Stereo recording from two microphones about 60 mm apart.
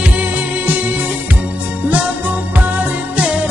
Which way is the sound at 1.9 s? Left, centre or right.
Right.